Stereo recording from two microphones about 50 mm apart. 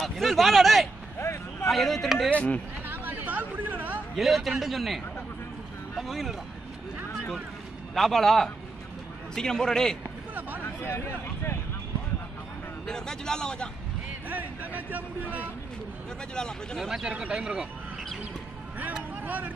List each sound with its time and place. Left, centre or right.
0.0 s speech: centre
1.2 s vehicle: left
1.7 s speech: centre
2.3 s speech: left
2.9 s a sound: right
4.2 s speech: centre
7.9 s speech: centre
10.8 s speech: left
12.8 s speech: centre
14.3 s speech: right
16.7 s speech: centre
17.0 s speech: centre
19.2 s speech: right